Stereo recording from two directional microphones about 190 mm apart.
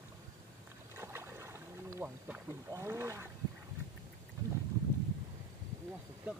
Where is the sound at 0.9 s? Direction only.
10° right (ahead or behind).